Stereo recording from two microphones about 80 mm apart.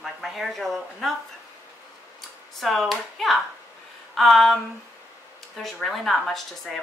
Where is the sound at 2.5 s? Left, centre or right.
Centre.